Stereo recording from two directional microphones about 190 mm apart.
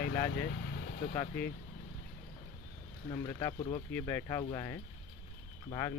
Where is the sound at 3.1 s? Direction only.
25° left (ahead or behind).